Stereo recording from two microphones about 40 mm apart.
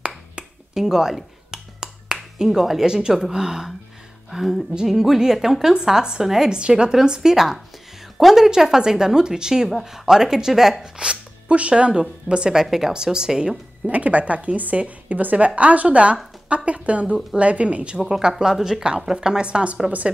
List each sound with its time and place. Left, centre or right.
0.7 s a sound: centre
2.3 s a woman's voice: centre
2.9 s a woman's voice: centre
4.3 s a woman's voice: centre
6.5 s a woman's voice: right
10.8 s speech: right
12.6 s a woman's voice: centre
12.9 s speech: centre
13.8 s a woman's voice: right
18.4 s a woman's voice: centre; by 19.8 s right